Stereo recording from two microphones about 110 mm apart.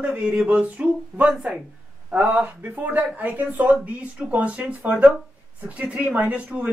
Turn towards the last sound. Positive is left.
turn(degrees=-10)  # may be behind; listen again after turning